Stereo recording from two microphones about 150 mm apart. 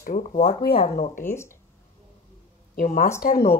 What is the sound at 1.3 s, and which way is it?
Speech, 15° left (ahead or behind).